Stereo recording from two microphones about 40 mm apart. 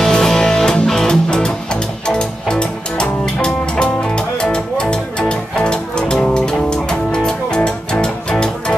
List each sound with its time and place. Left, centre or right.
0.0 s music: centre